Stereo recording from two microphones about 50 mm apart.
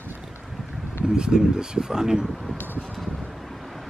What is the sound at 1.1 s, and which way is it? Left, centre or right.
Speech, centre.